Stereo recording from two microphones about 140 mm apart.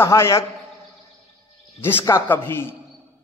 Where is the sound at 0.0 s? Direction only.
20° left (ahead or behind).